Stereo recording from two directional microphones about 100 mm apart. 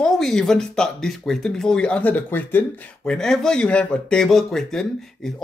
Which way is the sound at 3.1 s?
5° left (ahead or behind).